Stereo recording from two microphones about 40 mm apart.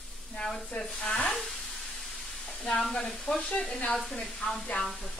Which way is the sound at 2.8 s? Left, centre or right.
Centre.